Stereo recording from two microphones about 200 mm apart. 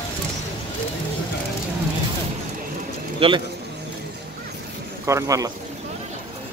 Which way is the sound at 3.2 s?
30° right (ahead or behind).